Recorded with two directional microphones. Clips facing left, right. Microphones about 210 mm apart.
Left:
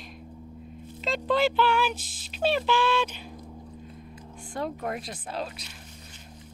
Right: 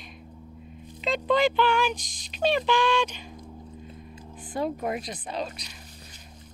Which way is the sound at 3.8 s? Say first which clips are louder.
Even; 25° right (ahead or behind).